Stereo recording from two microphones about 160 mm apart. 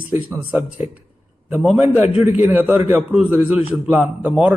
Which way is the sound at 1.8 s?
15° right (ahead or behind).